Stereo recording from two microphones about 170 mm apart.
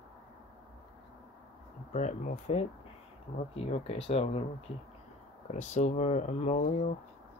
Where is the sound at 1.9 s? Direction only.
45° left (ahead or behind).